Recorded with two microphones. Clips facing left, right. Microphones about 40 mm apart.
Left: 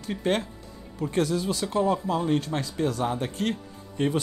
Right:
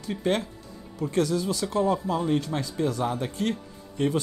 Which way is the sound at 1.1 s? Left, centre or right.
Left.